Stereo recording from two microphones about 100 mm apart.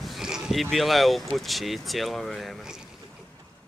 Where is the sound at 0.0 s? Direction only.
5° right (ahead or behind).